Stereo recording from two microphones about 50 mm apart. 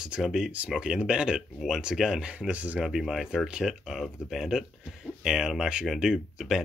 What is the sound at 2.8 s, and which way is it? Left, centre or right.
Speech, centre.